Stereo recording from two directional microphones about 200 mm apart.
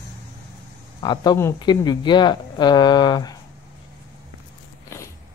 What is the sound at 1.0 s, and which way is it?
A man's voice, 20° left (ahead or behind).